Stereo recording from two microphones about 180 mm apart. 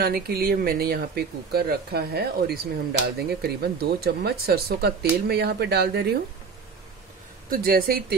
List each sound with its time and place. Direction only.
0.0 s speech: 55° right (ahead or behind)
7.4 s speech: 55° right (ahead or behind)